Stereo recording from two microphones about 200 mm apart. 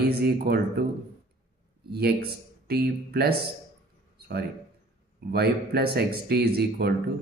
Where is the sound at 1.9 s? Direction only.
50° right (ahead or behind).